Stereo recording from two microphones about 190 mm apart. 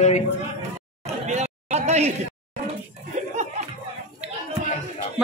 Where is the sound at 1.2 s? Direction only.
35° right (ahead or behind).